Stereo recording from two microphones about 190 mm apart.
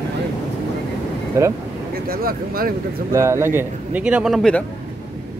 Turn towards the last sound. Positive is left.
turn(degrees=0)  # may be behind; listen again after turning